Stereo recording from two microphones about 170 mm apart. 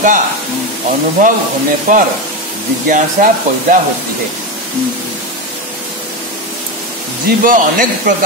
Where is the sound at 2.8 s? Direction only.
50° right (ahead or behind).